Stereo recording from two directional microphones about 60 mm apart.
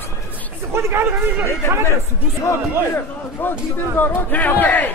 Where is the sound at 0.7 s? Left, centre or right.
Right.